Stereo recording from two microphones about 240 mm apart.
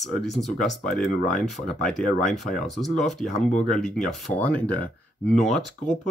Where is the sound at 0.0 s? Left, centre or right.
Centre.